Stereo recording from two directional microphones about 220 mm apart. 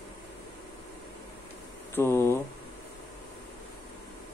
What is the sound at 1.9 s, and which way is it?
Speech, 10° left (ahead or behind).